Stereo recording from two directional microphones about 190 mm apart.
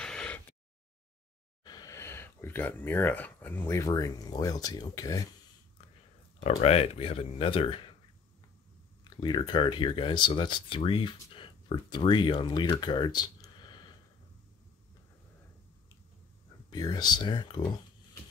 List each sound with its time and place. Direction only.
0.0 s a sound: 5° left (ahead or behind)
1.6 s speech: 20° left (ahead or behind)
6.4 s speech: 30° left (ahead or behind)
9.0 s speech: 25° left (ahead or behind)
16.7 s speech: 20° left (ahead or behind)